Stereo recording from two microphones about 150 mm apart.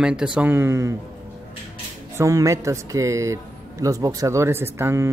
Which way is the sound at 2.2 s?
20° right (ahead or behind).